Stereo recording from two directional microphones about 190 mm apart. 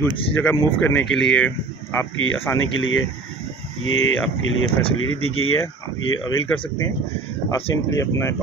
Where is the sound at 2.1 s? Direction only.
90° left.